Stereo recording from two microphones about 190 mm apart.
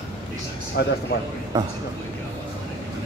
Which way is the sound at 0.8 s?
60° left (ahead or behind).